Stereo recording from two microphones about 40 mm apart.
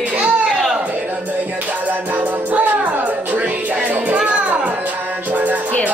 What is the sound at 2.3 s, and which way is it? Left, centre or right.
Music, right.